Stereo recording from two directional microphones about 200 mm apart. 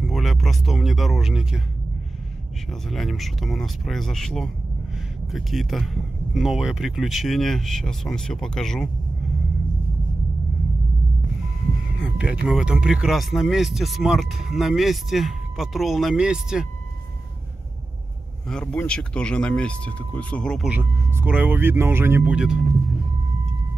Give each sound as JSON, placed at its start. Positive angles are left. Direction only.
{"t": 0.0, "sound": "speech", "side_deg": 0}
{"t": 2.7, "sound": "speech", "side_deg": 0}
{"t": 12.0, "sound": "music", "side_deg": -5}
{"t": 12.4, "sound": "speech", "side_deg": -5}
{"t": 18.5, "sound": "speech", "side_deg": 5}